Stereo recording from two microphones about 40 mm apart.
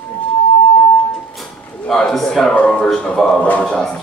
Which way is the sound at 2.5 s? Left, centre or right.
Left.